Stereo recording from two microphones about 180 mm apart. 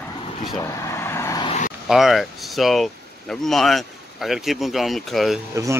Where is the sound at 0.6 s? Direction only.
15° left (ahead or behind).